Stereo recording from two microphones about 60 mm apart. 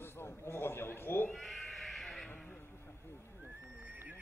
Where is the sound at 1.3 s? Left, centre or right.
Centre.